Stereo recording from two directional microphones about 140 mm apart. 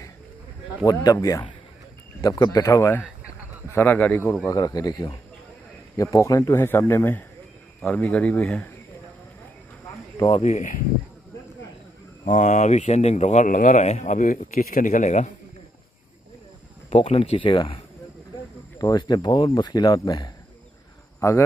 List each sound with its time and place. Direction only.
0.8 s speech: 25° left (ahead or behind)
4.5 s speech: 25° left (ahead or behind); by 8.6 s 10° left (ahead or behind)
10.3 s speech: 55° left (ahead or behind)
12.3 s speech: 60° left (ahead or behind)
16.9 s speech: 45° left (ahead or behind)
18.8 s speech: 30° left (ahead or behind)